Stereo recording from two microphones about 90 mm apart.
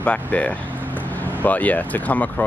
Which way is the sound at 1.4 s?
15° left (ahead or behind).